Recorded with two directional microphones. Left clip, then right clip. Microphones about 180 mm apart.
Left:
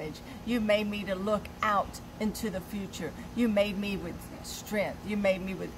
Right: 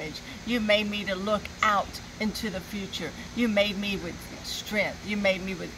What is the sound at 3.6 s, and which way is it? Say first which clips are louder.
Speech: right 4 dB; 65° left (ahead or behind).